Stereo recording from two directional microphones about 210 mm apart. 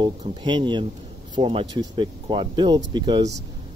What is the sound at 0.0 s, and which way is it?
Speech, 20° right (ahead or behind).